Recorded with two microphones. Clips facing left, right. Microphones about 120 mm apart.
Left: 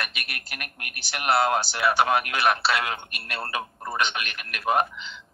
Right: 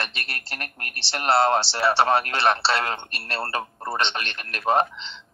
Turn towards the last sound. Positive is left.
turn(degrees=-30)  # may be behind; listen again after turning